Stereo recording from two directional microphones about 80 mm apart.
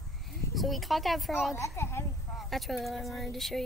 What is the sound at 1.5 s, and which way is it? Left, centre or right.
Speech, left.